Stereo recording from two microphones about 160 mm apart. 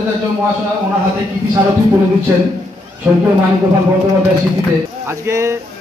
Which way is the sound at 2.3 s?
15° right (ahead or behind).